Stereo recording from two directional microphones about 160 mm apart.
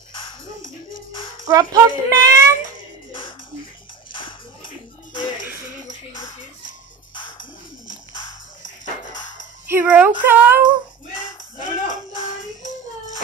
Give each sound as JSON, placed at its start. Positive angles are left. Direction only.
{"t": 0.1, "sound": "music", "side_deg": 30}
{"t": 1.4, "sound": "speech", "side_deg": -25}
{"t": 3.1, "sound": "music", "side_deg": 30}
{"t": 9.7, "sound": "speech", "side_deg": -10}
{"t": 11.6, "sound": "music", "side_deg": 55}